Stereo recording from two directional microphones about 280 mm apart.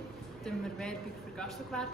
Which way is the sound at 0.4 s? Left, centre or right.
Centre.